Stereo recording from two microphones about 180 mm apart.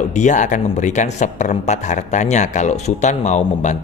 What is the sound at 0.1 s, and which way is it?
Speech, 40° left (ahead or behind).